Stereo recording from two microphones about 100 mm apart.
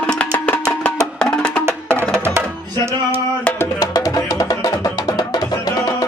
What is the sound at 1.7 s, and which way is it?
Music, 25° right (ahead or behind).